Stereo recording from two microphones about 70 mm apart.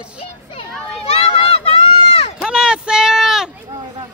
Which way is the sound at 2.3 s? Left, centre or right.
Centre.